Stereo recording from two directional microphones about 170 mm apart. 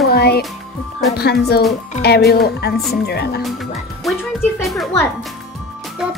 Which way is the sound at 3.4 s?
Centre (ahead or behind).